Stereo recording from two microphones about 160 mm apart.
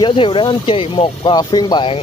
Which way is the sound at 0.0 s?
35° left (ahead or behind).